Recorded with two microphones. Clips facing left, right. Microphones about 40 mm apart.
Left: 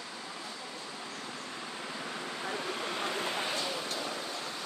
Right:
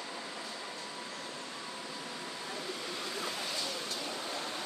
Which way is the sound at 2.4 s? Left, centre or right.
Left.